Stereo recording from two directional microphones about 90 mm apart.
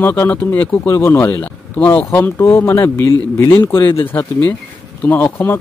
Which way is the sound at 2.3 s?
30° left (ahead or behind).